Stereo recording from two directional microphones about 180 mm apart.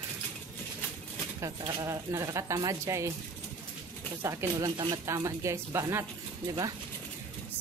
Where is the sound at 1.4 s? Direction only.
20° right (ahead or behind).